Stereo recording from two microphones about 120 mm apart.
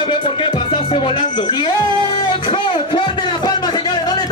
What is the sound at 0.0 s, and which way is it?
Music, 40° left (ahead or behind).